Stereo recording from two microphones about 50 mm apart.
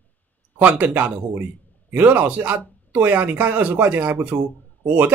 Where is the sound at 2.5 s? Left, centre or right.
Right.